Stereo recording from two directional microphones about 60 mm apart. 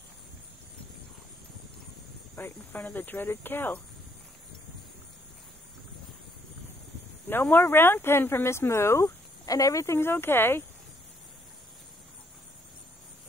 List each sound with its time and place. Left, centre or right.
2.3 s speech: left
7.2 s speech: left
9.5 s speech: left
9.8 s speech: left